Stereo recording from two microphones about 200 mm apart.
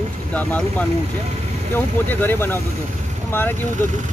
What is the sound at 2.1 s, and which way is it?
Speech, 10° left (ahead or behind).